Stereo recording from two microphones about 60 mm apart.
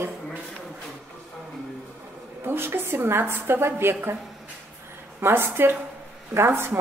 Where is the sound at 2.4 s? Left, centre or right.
Right.